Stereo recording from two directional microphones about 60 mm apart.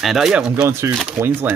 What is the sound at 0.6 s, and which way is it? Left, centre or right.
Speech, right.